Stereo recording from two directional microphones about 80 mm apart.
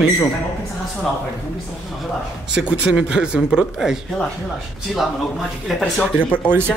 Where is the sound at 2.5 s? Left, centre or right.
Centre.